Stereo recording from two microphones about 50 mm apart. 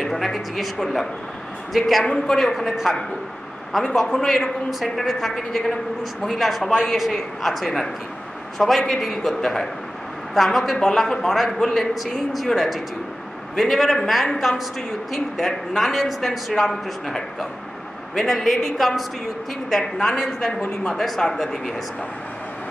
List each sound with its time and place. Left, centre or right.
0.0 s a woman's voice: centre